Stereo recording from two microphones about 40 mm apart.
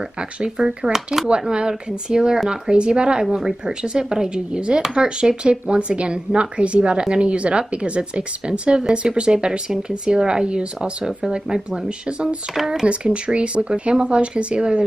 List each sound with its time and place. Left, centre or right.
0.4 s speech: right
12.8 s speech: right